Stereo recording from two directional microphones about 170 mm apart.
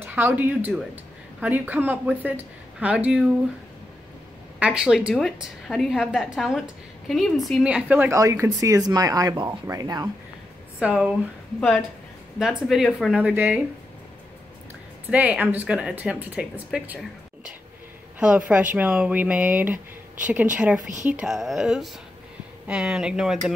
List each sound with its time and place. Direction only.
0.0 s a woman's voice: 10° right (ahead or behind)
4.6 s a woman's voice: 5° right (ahead or behind); by 10.0 s 20° right (ahead or behind)
10.8 s a woman's voice: 5° right (ahead or behind)
12.4 s a woman's voice: 5° right (ahead or behind)
15.0 s a woman's voice: 10° right (ahead or behind)
18.2 s a woman's voice: 5° right (ahead or behind)
20.8 s a woman's voice: 50° right (ahead or behind)
21.1 s a woman's voice: 5° right (ahead or behind)